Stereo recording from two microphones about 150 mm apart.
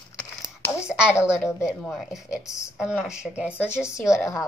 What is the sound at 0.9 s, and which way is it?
Speech, 5° right (ahead or behind).